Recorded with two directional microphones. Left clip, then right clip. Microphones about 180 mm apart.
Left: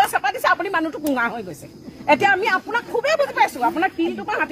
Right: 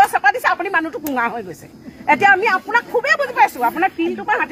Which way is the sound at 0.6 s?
30° left (ahead or behind).